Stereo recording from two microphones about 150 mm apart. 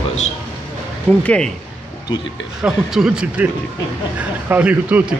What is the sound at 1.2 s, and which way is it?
Speech, 5° left (ahead or behind).